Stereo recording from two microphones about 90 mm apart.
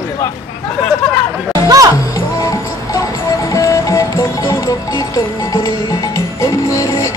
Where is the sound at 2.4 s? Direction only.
35° left (ahead or behind).